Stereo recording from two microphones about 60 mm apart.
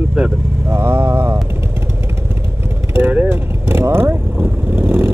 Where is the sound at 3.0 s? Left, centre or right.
Right.